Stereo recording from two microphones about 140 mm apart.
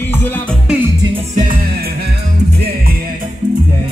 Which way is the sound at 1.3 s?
70° right (ahead or behind).